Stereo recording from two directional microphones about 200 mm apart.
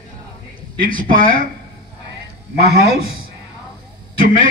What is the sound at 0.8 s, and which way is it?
Speech, 45° right (ahead or behind).